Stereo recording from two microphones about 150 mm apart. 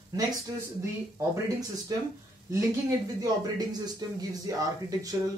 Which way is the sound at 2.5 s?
20° right (ahead or behind).